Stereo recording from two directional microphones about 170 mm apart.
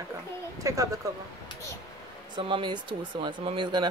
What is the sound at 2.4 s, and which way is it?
Speech, 30° right (ahead or behind).